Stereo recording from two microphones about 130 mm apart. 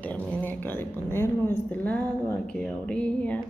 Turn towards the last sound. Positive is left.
turn(degrees=10)  # may be behind; listen again after turning